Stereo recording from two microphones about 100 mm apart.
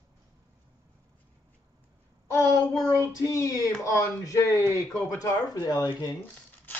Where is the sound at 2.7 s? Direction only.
35° left (ahead or behind).